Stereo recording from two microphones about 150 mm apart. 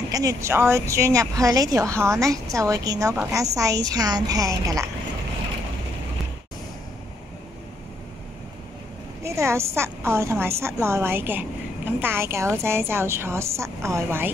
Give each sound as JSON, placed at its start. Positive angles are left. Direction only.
{"t": 0.1, "sound": "speech", "side_deg": -20}
{"t": 9.2, "sound": "a woman's voice", "side_deg": -20}